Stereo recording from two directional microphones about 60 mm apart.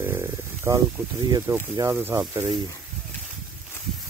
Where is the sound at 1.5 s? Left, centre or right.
Right.